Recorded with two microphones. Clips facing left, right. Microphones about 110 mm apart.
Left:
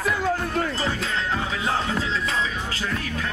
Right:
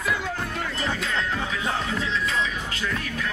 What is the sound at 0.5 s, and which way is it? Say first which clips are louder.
Music: left 3 dB; 35° left (ahead or behind).